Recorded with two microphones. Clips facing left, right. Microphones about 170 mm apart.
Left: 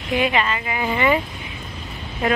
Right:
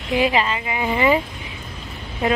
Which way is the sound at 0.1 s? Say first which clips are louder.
Right 1 dB; 30° right (ahead or behind).